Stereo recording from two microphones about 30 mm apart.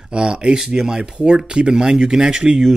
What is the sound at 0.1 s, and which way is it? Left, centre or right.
Speech, right.